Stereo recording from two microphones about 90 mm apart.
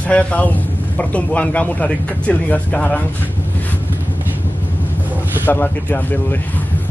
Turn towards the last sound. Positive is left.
turn(degrees=20)  # may be behind; listen again after turning